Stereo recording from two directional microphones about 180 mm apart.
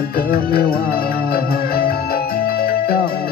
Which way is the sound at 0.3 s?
55° left (ahead or behind).